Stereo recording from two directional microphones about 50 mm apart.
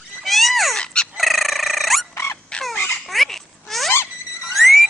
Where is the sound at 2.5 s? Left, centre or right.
Centre.